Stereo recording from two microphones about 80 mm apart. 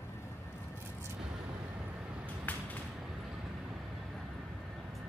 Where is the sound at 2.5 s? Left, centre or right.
Left.